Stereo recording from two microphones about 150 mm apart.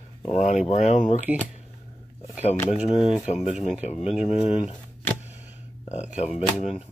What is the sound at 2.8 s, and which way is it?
Speech, 40° left (ahead or behind).